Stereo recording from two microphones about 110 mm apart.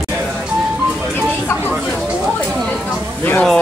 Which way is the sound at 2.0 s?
10° right (ahead or behind).